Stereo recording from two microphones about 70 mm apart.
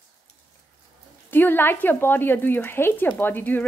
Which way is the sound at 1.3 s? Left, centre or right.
Left.